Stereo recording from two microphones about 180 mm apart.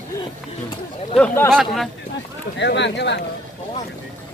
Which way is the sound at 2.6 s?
75° left (ahead or behind).